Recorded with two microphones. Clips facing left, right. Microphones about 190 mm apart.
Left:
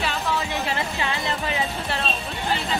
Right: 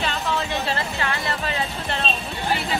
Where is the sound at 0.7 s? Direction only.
15° left (ahead or behind).